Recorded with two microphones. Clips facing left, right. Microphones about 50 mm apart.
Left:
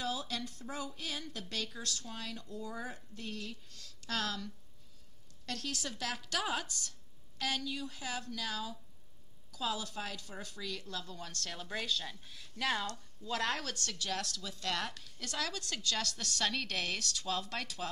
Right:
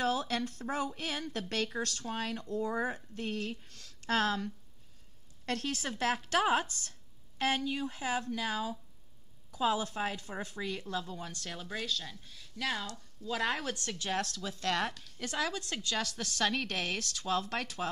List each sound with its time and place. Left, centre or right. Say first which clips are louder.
0.0 s a woman's voice: right 6 dB; right; by 11.7 s centre
11.7 s a woman's voice: even; centre; by 16.0 s right
16.0 s a woman's voice: right 3 dB; centre; by 17.8 s right